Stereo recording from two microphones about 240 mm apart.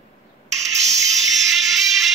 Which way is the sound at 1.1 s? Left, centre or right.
Centre.